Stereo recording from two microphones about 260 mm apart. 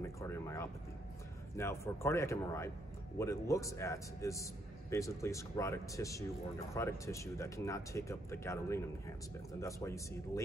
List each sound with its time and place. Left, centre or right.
0.0 s a man's voice: centre